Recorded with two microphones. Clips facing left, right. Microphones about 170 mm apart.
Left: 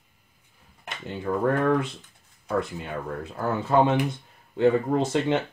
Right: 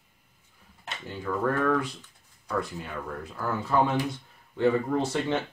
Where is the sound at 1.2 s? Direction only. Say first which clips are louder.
Left 3 dB; 30° left (ahead or behind).